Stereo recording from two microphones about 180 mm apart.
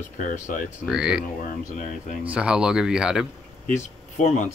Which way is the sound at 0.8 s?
5° right (ahead or behind).